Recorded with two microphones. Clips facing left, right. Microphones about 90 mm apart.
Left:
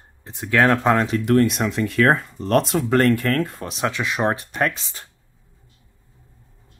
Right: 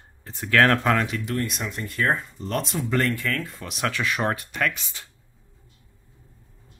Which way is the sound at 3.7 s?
25° left (ahead or behind).